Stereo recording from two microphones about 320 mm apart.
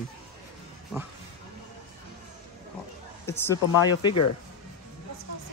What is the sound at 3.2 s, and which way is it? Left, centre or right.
Speech, centre.